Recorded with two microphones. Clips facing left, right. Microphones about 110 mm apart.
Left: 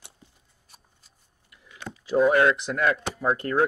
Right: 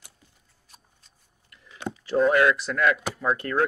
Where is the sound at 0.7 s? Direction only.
10° left (ahead or behind).